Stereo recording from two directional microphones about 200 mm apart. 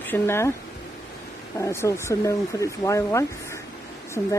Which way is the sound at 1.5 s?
15° left (ahead or behind).